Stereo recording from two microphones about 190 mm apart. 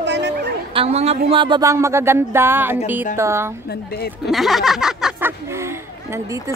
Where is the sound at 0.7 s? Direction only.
35° right (ahead or behind); by 3.5 s 15° right (ahead or behind).